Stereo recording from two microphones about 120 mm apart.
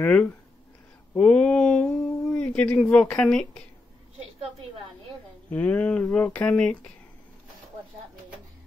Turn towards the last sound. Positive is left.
turn(degrees=10)  # may be behind; listen again after turning